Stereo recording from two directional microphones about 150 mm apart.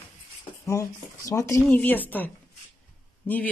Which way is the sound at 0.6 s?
20° left (ahead or behind).